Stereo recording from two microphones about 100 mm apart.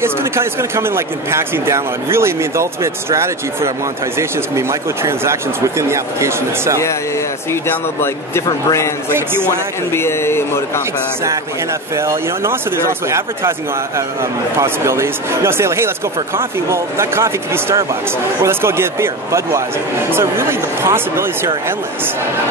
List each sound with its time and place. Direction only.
0.0 s speech: 25° right (ahead or behind)
8.5 s a man's voice: 35° left (ahead or behind)
9.1 s speech: 20° right (ahead or behind)
9.9 s speech: 25° left (ahead or behind)
12.0 s speech: 25° right (ahead or behind)